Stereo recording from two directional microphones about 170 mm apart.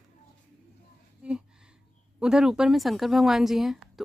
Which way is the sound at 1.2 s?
5° right (ahead or behind).